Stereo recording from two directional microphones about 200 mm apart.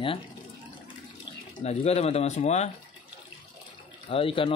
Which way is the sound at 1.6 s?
30° left (ahead or behind).